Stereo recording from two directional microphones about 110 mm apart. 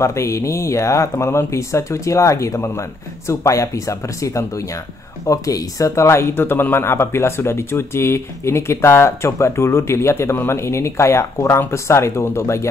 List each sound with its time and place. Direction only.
0.0 s speech: 25° left (ahead or behind)